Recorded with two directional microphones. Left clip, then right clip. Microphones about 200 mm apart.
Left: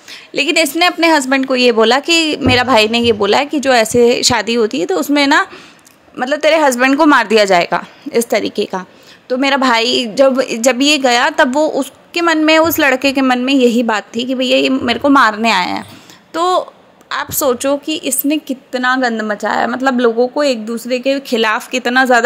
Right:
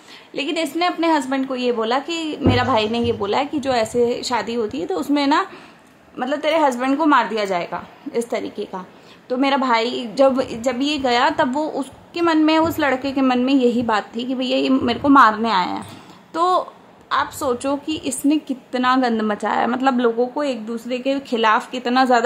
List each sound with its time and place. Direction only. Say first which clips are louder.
0.1 s a woman's voice: left 10 dB; 20° left (ahead or behind)
9.3 s a woman's voice: left 5 dB; 15° left (ahead or behind)
10.1 s a woman's voice: left 3 dB; 10° left (ahead or behind)
16.3 s speech: left 4 dB; 5° left (ahead or behind)
17.1 s a woman's voice: left 4 dB; 15° left (ahead or behind)